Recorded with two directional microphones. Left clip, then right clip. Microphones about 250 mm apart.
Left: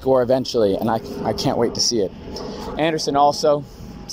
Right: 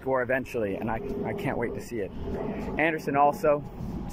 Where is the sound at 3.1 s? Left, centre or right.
Centre.